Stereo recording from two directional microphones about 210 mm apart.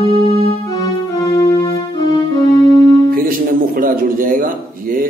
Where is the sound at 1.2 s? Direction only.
20° left (ahead or behind).